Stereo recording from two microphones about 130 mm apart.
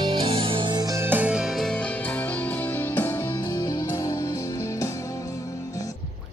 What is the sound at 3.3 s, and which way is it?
Music, 30° left (ahead or behind).